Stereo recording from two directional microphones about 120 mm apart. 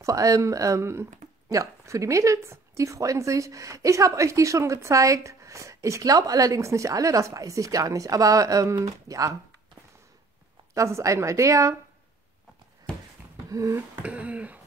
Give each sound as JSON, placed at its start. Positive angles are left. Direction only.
{"t": 0.0, "sound": "speech", "side_deg": -30}
{"t": 10.7, "sound": "speech", "side_deg": -25}
{"t": 13.5, "sound": "a sound", "side_deg": -25}
{"t": 14.0, "sound": "speech", "side_deg": -10}